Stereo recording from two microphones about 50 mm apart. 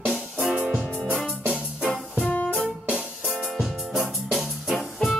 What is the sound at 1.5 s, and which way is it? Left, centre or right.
Music, right.